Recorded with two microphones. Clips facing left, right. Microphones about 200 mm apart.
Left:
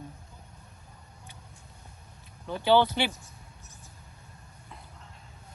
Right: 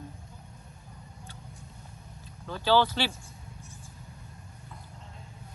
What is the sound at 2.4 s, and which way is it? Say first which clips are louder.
Speech: left 2 dB; 20° left (ahead or behind).